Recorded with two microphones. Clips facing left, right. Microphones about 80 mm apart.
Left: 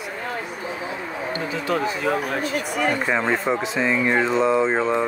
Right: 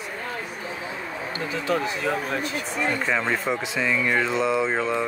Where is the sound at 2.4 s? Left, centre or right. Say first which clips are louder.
Left 4 dB; left.